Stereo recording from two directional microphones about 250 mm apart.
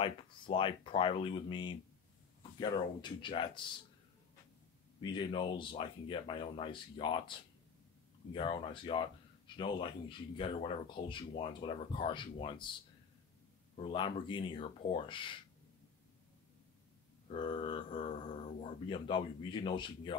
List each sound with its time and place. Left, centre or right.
0.0 s speech: centre
5.0 s speech: centre
13.7 s speech: centre
17.3 s speech: left